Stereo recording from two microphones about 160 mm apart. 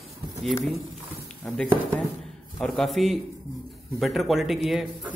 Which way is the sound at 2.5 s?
Centre (ahead or behind).